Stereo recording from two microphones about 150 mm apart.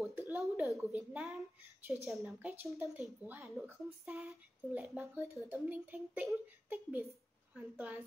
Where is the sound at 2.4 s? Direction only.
15° right (ahead or behind).